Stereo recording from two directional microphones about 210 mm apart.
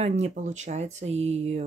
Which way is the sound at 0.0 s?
30° right (ahead or behind).